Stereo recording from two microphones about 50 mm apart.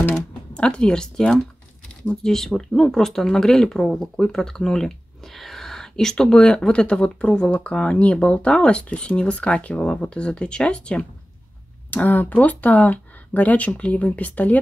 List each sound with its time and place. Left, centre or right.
0.1 s speech: centre
11.9 s speech: left